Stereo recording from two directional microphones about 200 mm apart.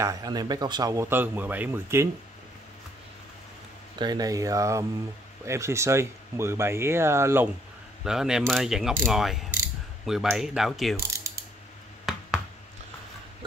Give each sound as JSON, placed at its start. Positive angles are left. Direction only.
{"t": 0.0, "sound": "speech", "side_deg": -20}
{"t": 4.0, "sound": "speech", "side_deg": -20}
{"t": 8.0, "sound": "mechanisms", "side_deg": -5}
{"t": 11.3, "sound": "mechanisms", "side_deg": -15}
{"t": 12.1, "sound": "finger snapping", "side_deg": 0}